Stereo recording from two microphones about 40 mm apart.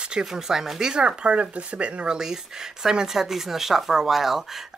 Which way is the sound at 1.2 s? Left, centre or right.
Right.